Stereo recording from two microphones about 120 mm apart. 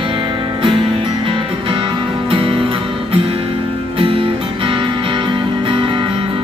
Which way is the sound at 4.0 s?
45° right (ahead or behind).